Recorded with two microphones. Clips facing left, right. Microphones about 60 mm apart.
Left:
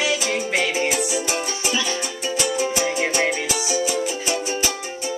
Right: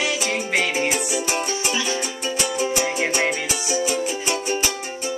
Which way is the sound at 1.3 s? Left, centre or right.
Right.